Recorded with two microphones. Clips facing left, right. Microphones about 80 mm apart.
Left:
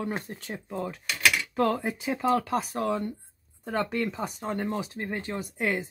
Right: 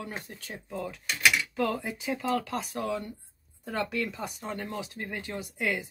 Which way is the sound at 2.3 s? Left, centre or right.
Centre.